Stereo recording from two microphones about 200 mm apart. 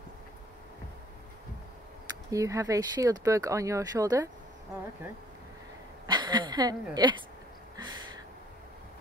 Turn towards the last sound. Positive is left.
turn(degrees=-20)  # may be behind; listen again after turning